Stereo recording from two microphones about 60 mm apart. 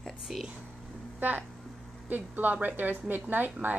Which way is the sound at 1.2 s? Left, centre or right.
Right.